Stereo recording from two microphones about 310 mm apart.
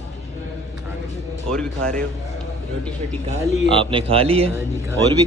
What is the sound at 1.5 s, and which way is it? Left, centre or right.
Speech, centre.